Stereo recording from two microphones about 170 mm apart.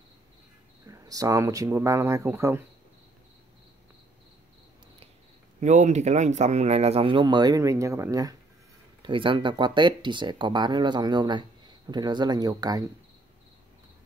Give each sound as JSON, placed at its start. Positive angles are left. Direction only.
{"t": 0.8, "sound": "speech", "side_deg": -20}
{"t": 5.6, "sound": "speech", "side_deg": -45}